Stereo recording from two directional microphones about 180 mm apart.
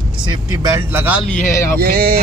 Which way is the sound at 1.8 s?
55° right (ahead or behind).